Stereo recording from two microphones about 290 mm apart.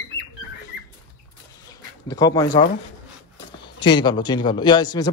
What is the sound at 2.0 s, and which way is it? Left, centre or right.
Speech, centre.